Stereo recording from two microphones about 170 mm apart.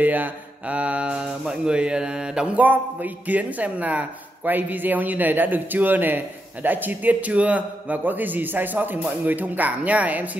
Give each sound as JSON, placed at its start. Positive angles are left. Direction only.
{"t": 0.0, "sound": "a man's voice", "side_deg": -10}